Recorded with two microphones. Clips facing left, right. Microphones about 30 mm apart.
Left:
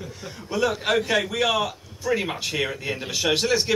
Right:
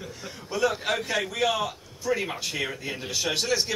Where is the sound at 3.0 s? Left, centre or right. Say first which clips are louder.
Left 5 dB; left.